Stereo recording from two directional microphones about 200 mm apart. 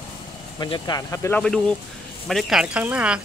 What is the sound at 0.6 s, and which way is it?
Speech, 20° left (ahead or behind).